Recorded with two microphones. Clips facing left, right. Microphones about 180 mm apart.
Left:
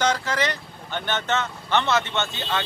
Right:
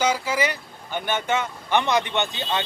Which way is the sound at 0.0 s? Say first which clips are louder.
Right 1 dB; 10° right (ahead or behind).